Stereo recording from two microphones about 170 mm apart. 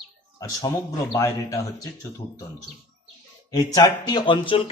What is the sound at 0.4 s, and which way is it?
A man's voice, 20° left (ahead or behind).